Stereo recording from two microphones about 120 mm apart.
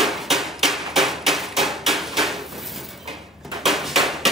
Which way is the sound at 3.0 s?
Centre (ahead or behind).